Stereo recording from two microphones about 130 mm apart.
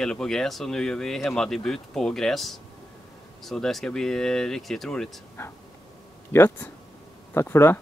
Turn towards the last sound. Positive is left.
turn(degrees=20)  # may be behind; listen again after turning